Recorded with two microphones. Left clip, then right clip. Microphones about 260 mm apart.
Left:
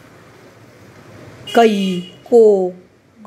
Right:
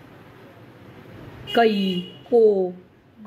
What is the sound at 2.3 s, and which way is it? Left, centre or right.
Speech, left.